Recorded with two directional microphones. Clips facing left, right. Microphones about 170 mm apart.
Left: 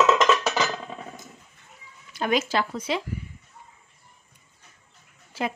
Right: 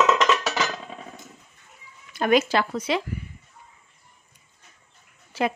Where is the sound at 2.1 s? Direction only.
60° right (ahead or behind).